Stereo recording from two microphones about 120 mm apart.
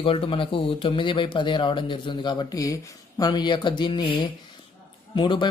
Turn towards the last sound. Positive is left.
turn(degrees=40)  # may be behind; listen again after turning